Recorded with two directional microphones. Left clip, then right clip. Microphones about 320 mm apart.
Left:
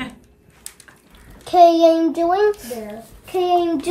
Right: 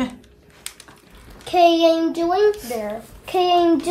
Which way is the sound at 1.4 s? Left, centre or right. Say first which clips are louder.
Left 3 dB; centre.